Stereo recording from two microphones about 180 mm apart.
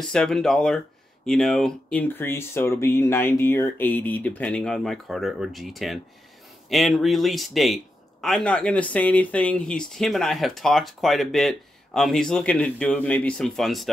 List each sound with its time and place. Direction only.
0.0 s speech: 5° left (ahead or behind)